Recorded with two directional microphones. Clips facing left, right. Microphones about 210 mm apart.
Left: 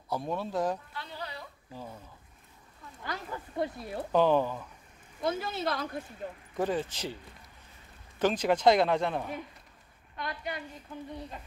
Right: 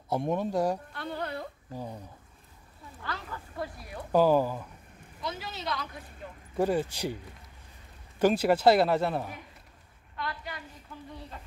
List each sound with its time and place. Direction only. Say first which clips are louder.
0.1 s speech: right 4 dB; 20° right (ahead or behind)
0.9 s a sound: right 6 dB; 55° right (ahead or behind)
1.7 s speech: right 2 dB; 15° right (ahead or behind)
3.0 s speech: left 1 dB; 20° left (ahead or behind)
4.1 s speech: right 2 dB; 5° right (ahead or behind)
5.2 s speech: left 6 dB; 50° left (ahead or behind)
6.5 s speech: right 4 dB; 10° right (ahead or behind)
8.2 s speech: right 3 dB; 10° right (ahead or behind)
10.1 s a woman's voice: left 1 dB; 20° left (ahead or behind)